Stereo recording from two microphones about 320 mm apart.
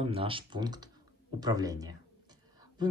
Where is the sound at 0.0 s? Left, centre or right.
Centre.